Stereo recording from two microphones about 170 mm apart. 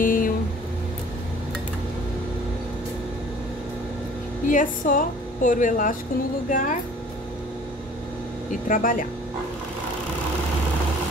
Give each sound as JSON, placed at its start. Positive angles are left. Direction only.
{"t": 0.0, "sound": "a sound", "side_deg": 55}
{"t": 4.5, "sound": "a woman's voice", "side_deg": 50}
{"t": 8.5, "sound": "a woman's voice", "side_deg": 50}